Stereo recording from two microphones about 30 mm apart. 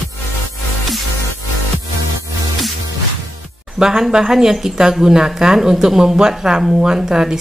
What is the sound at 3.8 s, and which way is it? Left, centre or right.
Speech, centre.